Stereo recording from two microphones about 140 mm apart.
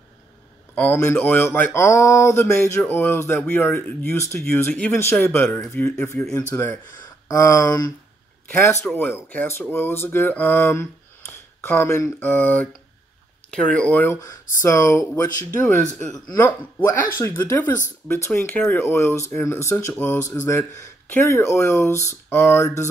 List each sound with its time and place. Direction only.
0.7 s speech: 15° left (ahead or behind)
13.7 s speech: 10° left (ahead or behind)